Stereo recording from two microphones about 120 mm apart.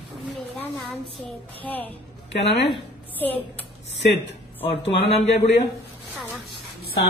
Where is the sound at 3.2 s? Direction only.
15° left (ahead or behind).